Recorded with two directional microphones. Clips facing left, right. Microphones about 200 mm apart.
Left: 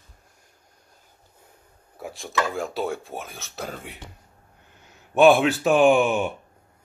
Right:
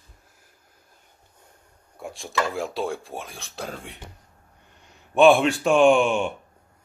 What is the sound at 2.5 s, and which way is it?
Speech, centre (ahead or behind).